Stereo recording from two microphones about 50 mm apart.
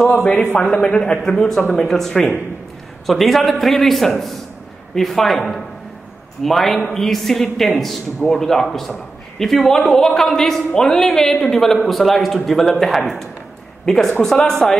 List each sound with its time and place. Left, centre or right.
0.2 s a man's voice: left
1.6 s speech: left
1.9 s a man's voice: centre
13.8 s a man's voice: centre